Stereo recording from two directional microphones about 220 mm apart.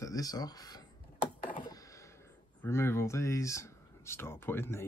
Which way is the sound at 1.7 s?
15° left (ahead or behind).